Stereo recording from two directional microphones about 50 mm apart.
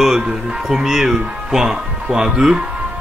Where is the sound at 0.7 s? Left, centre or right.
Centre.